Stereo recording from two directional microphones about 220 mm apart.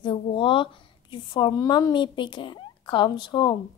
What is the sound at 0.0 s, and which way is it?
A woman's voice, 25° left (ahead or behind).